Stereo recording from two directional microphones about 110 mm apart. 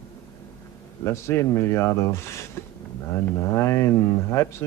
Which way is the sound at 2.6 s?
25° left (ahead or behind).